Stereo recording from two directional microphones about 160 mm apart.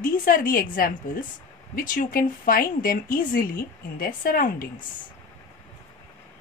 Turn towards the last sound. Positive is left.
turn(degrees=60)  # may be behind; listen again after turning